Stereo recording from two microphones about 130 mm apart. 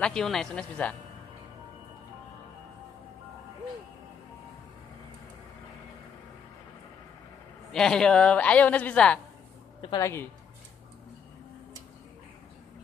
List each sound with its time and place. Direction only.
0.0 s speech: 5° left (ahead or behind)
7.7 s a woman's voice: 5° left (ahead or behind)
9.9 s speech: 20° left (ahead or behind)